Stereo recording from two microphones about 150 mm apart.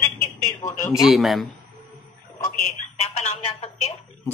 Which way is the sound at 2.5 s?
50° left (ahead or behind).